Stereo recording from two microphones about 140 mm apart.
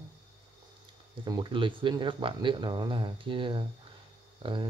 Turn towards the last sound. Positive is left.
turn(degrees=-40)  # may be behind; listen again after turning